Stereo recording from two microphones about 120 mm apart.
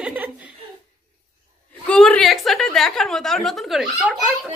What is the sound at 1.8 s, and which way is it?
A woman's voice, 10° left (ahead or behind).